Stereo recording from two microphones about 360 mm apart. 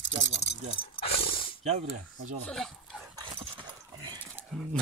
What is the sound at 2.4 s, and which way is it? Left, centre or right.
Speech, centre.